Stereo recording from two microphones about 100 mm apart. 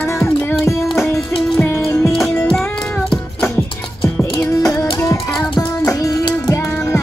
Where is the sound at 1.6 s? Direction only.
25° left (ahead or behind).